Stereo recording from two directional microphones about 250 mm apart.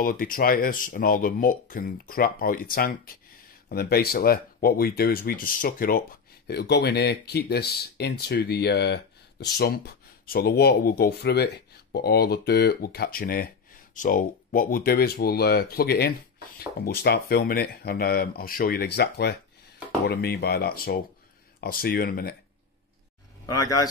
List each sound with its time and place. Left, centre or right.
0.0 s speech: left
23.4 s speech: centre